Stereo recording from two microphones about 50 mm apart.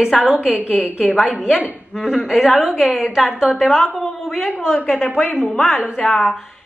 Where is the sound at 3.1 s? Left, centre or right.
Centre.